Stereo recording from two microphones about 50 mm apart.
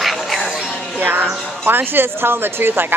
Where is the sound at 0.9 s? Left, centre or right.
Right.